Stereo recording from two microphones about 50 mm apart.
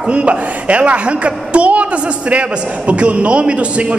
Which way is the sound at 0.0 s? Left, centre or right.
Right.